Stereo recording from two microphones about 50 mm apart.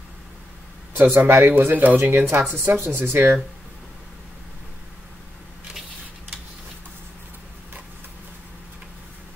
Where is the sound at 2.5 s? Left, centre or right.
Right.